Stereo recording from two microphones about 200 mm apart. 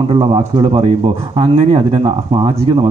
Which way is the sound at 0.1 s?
25° right (ahead or behind).